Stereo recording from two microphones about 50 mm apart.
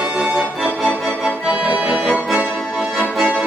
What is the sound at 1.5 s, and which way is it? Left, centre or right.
Accordion, right.